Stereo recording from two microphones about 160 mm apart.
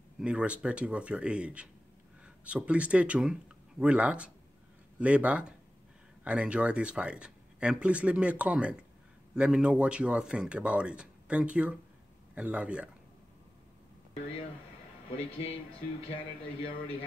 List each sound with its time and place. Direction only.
0.2 s speech: 5° right (ahead or behind)
15.0 s a man's voice: 40° left (ahead or behind)